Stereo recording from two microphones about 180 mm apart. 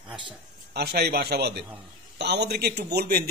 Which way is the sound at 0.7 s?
60° right (ahead or behind).